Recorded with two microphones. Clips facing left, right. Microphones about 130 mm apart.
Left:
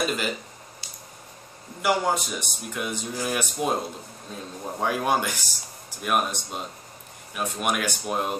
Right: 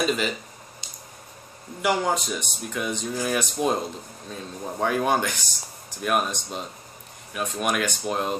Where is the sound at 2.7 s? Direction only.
5° left (ahead or behind).